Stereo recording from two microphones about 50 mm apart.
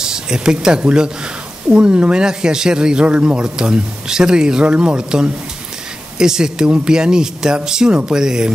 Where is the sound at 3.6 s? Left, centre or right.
Centre.